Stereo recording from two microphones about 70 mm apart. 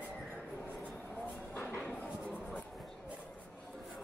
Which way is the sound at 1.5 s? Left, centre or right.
Left.